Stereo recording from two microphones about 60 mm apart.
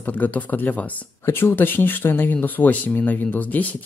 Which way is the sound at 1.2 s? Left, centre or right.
Left.